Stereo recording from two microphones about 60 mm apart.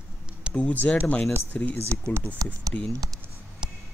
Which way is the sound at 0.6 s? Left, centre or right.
Left.